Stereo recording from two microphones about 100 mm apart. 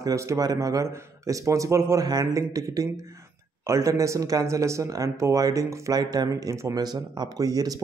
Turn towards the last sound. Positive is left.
turn(degrees=-40)  # may be behind; listen again after turning